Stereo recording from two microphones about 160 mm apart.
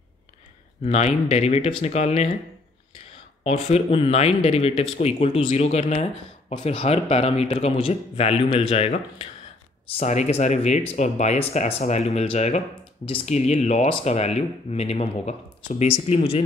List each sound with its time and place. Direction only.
0.8 s speech: 40° left (ahead or behind)
3.4 s speech: 40° left (ahead or behind)